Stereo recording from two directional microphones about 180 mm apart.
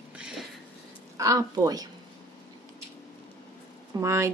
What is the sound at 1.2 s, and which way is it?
Speech, 20° right (ahead or behind).